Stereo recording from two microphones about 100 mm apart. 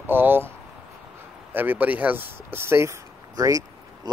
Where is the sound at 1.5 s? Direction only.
20° right (ahead or behind).